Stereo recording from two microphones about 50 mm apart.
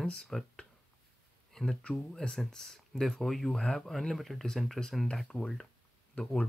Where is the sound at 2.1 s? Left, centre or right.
Centre.